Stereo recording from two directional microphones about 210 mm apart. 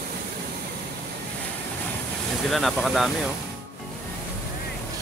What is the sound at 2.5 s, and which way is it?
Speech, centre (ahead or behind).